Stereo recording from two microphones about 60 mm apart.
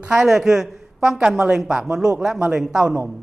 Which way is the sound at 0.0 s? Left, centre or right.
Centre.